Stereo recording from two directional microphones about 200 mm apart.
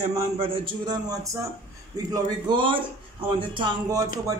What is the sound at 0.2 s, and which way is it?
A man's voice, 25° right (ahead or behind).